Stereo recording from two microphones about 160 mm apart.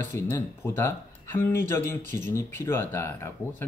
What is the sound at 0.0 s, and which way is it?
Speech, 15° left (ahead or behind).